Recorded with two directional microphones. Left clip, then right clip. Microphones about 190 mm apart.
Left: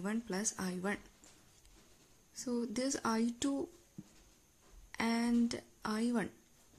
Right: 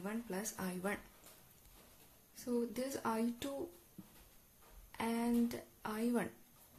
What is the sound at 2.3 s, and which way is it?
Speech, 25° left (ahead or behind).